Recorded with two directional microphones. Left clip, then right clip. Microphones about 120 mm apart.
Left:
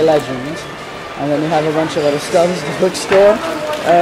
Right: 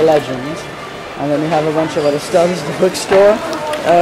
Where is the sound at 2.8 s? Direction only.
20° right (ahead or behind).